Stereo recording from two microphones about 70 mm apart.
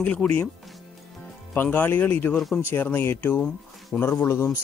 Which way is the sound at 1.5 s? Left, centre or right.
Left.